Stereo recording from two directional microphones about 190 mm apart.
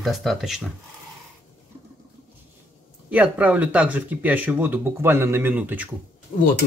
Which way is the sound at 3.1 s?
10° right (ahead or behind).